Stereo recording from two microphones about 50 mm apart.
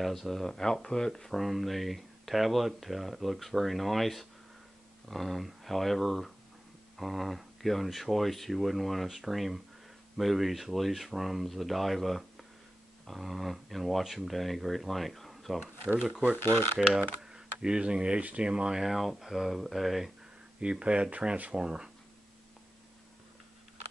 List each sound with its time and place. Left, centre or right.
0.0 s speech: centre
1.3 s speech: centre
16.3 s speech: left
17.2 s speech: centre
18.8 s speech: centre
20.6 s speech: right